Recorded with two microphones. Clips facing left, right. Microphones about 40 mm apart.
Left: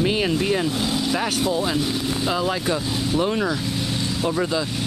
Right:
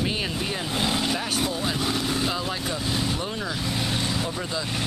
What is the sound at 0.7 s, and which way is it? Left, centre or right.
Speech, right.